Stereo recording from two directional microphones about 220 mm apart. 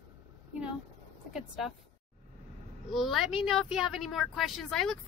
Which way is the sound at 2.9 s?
Centre (ahead or behind).